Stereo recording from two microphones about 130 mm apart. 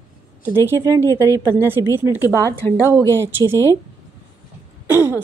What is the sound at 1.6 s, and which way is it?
Speech, 20° right (ahead or behind).